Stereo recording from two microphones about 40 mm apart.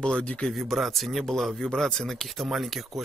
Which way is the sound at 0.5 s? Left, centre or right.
Centre.